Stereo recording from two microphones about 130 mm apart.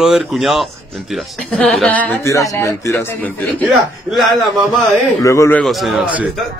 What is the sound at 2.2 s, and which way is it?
A man's voice, 25° left (ahead or behind).